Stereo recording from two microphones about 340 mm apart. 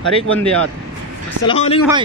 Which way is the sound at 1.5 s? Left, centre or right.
Centre.